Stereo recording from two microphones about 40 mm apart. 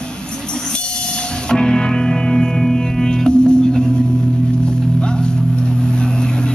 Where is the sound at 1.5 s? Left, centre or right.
Centre.